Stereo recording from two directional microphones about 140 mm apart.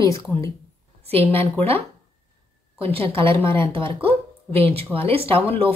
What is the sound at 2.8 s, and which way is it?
A woman's voice, 40° right (ahead or behind).